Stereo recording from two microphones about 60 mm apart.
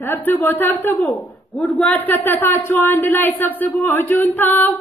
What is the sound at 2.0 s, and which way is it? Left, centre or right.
A woman's voice, left.